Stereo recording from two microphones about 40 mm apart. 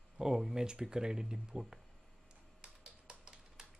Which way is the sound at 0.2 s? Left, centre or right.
Centre.